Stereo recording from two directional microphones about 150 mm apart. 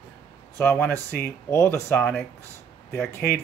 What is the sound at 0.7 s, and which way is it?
Speech, 15° left (ahead or behind).